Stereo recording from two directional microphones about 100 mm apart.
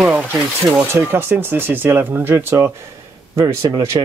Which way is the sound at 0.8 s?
25° right (ahead or behind).